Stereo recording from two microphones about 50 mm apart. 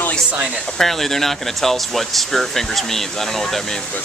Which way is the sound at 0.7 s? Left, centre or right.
Centre.